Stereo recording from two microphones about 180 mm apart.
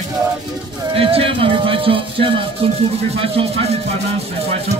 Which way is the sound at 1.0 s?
30° right (ahead or behind).